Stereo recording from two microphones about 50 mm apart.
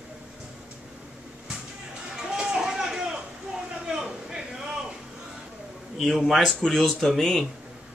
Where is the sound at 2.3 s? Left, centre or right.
Centre.